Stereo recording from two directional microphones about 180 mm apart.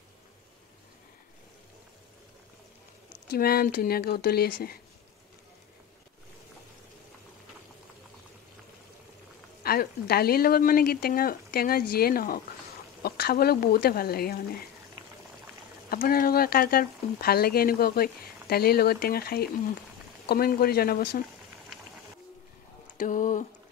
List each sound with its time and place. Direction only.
3.3 s speech: 55° left (ahead or behind)
9.6 s speech: 60° left (ahead or behind)
15.9 s speech: 55° left (ahead or behind)
22.9 s a sound: 45° left (ahead or behind)